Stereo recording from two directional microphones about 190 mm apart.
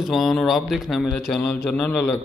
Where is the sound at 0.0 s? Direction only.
Centre (ahead or behind).